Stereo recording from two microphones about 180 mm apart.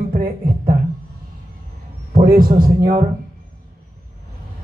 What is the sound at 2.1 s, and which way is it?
Speech, 55° right (ahead or behind).